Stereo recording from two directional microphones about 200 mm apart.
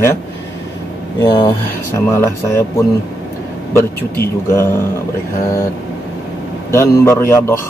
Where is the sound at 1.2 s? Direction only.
20° left (ahead or behind).